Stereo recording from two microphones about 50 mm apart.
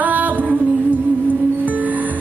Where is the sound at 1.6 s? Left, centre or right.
Right.